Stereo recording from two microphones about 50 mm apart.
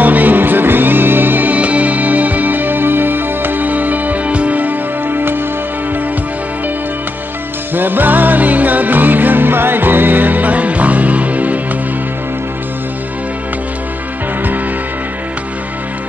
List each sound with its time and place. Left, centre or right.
0.0 s music: right
7.7 s music: right